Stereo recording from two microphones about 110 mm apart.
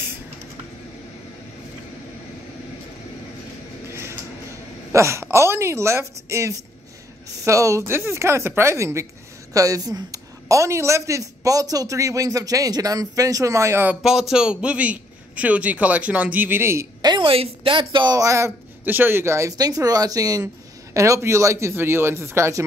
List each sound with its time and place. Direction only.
3.9 s a sound: 20° right (ahead or behind)
4.9 s a woman's voice: 25° right (ahead or behind)
14.3 s a man's voice: 10° right (ahead or behind)
17.0 s a woman's voice: 45° right (ahead or behind)
18.1 s a woman's voice: 30° right (ahead or behind)